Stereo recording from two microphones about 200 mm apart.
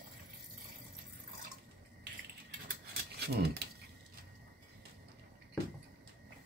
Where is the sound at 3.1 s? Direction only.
55° right (ahead or behind).